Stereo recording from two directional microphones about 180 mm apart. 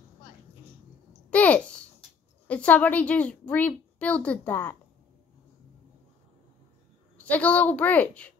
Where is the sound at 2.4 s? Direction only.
5° left (ahead or behind).